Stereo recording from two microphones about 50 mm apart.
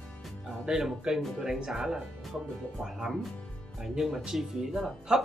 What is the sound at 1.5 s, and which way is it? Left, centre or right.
Speech, centre.